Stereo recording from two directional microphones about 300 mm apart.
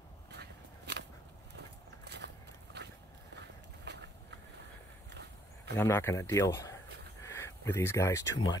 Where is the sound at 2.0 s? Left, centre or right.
Right.